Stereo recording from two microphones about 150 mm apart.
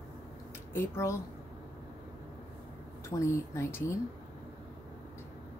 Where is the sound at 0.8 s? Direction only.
20° left (ahead or behind).